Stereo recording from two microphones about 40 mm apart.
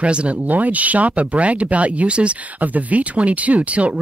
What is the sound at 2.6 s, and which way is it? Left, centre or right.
Speech, right.